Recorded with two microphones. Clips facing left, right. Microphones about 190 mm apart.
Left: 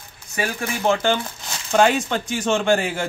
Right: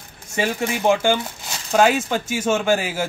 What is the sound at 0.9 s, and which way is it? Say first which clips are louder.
Speech: right 1 dB; 10° right (ahead or behind).